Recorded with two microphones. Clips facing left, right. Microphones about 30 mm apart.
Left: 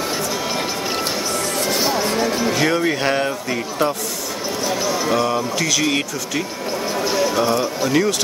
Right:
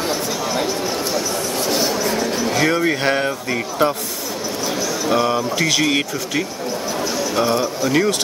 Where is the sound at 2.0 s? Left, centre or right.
Left.